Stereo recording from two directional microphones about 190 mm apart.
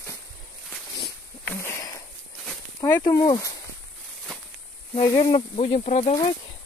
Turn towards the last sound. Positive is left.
turn(degrees=40)  # may be behind; listen again after turning